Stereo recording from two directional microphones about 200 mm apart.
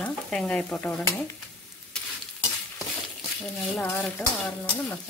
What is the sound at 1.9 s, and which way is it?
Stir, 5° left (ahead or behind).